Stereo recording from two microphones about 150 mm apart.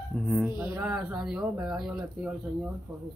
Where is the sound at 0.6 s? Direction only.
15° right (ahead or behind).